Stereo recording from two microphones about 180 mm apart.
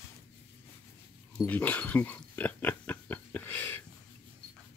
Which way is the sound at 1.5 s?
10° left (ahead or behind).